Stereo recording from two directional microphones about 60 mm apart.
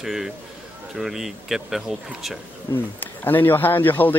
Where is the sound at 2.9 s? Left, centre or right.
Left.